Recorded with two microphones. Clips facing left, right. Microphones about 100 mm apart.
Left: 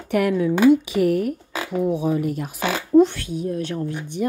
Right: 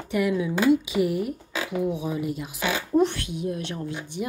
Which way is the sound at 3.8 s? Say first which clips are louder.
Left 4 dB; 55° left (ahead or behind).